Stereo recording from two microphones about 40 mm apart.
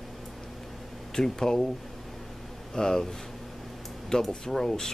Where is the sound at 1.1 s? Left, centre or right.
Centre.